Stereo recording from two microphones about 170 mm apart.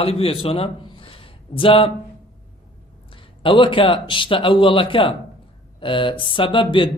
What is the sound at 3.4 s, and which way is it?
A man's voice, 30° left (ahead or behind).